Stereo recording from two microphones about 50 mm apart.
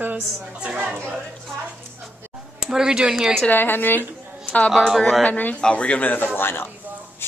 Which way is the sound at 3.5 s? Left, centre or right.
Left.